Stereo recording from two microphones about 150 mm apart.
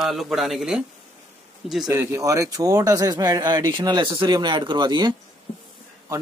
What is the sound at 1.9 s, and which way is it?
Speech, 15° right (ahead or behind).